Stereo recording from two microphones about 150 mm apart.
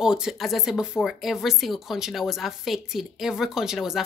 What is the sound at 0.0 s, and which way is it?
Speech, 5° right (ahead or behind).